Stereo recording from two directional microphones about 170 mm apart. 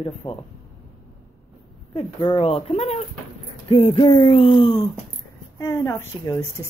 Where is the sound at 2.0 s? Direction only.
30° left (ahead or behind).